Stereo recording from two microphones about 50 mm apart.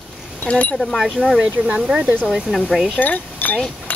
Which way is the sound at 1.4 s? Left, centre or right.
Right.